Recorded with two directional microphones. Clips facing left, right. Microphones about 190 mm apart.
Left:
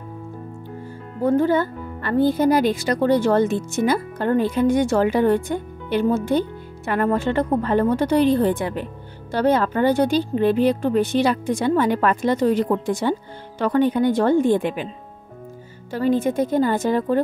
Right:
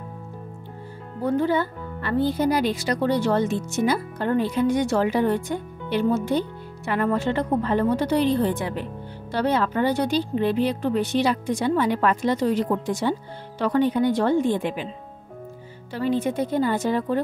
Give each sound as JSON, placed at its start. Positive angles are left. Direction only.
{"t": 1.2, "sound": "speech", "side_deg": 45}
{"t": 15.9, "sound": "speech", "side_deg": 45}